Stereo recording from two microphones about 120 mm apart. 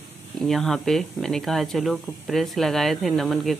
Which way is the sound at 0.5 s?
5° left (ahead or behind).